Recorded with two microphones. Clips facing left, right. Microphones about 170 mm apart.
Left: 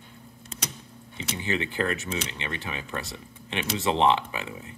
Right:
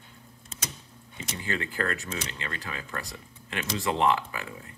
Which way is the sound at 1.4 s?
20° left (ahead or behind).